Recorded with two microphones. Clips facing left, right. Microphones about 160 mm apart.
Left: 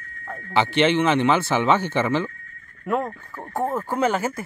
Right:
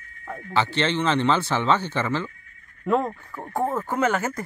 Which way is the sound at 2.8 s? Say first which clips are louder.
Right 2 dB; 5° left (ahead or behind).